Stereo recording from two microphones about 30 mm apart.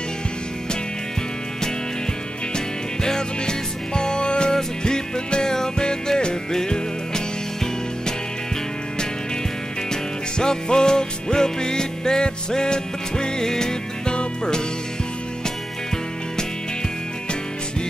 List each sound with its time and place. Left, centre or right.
2.5 s music: left
9.8 s music: left